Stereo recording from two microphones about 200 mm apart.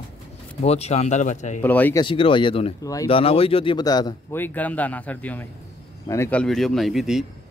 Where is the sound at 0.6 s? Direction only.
30° left (ahead or behind).